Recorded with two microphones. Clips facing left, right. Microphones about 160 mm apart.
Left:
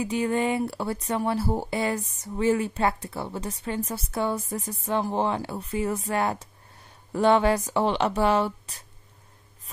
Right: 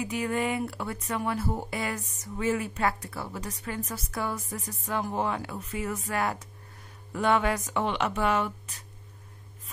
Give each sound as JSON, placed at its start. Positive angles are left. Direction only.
{"t": 0.0, "sound": "speech", "side_deg": 30}